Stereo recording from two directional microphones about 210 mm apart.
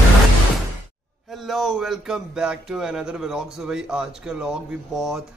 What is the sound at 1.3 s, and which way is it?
Speech, centre (ahead or behind).